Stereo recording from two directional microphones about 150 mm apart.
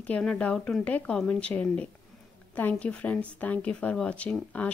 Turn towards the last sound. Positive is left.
turn(degrees=10)  # may be behind; listen again after turning